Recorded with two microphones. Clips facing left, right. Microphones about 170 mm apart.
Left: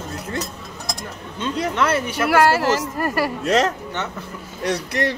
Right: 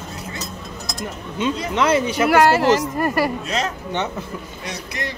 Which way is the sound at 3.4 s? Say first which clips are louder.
Left 6 dB; 80° left.